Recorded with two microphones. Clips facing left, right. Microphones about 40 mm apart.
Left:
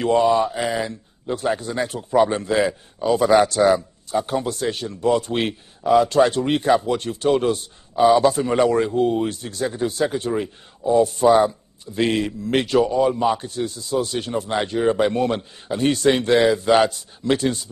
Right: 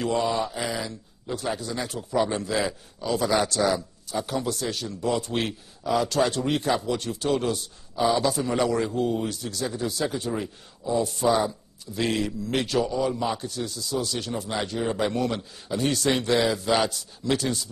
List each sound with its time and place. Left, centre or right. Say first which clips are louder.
0.0 s speech: left 8 dB; left
11.3 s a man's voice: left 8 dB; left
13.4 s speech: left 5 dB; left